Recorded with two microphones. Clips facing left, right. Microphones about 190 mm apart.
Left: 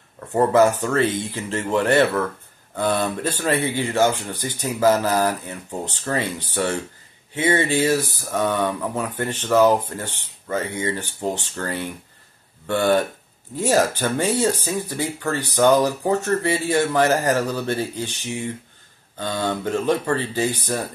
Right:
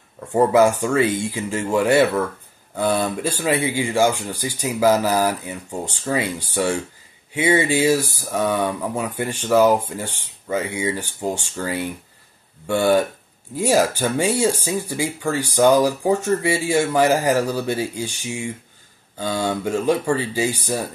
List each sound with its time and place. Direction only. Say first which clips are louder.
0.3 s speech: right 1 dB; 10° right (ahead or behind)